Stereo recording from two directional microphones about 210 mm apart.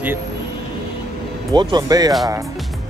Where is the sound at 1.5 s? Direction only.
20° right (ahead or behind).